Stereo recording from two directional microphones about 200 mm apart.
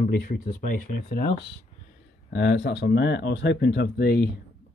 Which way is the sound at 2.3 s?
60° left (ahead or behind).